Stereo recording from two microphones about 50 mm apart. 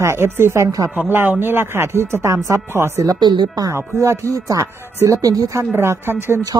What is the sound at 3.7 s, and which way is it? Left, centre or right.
Speech, right.